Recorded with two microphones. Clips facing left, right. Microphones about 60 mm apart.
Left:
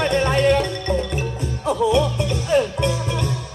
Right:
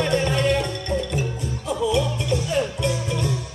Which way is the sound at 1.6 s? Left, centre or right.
Left.